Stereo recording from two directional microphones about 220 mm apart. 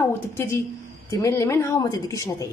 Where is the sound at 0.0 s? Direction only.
10° left (ahead or behind).